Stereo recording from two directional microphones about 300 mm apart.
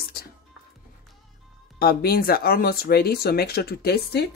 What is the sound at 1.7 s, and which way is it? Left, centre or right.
Speech, left.